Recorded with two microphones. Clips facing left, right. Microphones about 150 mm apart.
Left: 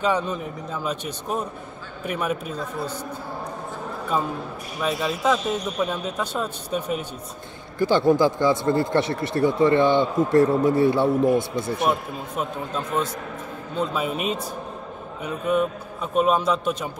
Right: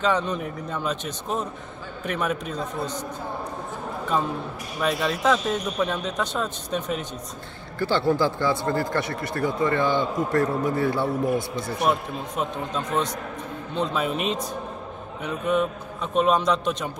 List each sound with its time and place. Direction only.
0.0 s a man's voice: 10° left (ahead or behind)
4.8 s a man's voice: 5° left (ahead or behind); by 11.4 s 25° left (ahead or behind)
11.9 s a man's voice: 5° left (ahead or behind)